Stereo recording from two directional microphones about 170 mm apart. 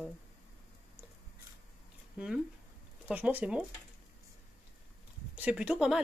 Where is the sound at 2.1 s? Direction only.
5° right (ahead or behind).